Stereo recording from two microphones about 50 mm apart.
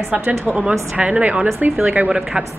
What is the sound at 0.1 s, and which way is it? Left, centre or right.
A woman's voice, right.